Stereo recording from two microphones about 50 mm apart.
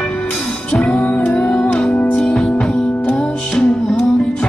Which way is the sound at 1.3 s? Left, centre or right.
Centre.